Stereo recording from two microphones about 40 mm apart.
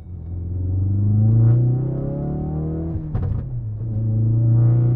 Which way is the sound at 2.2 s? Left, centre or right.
Left.